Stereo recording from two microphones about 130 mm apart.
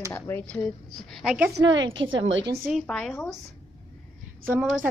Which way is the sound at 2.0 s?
40° right (ahead or behind).